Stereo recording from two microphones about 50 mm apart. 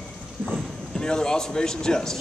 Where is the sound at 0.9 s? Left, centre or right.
Centre.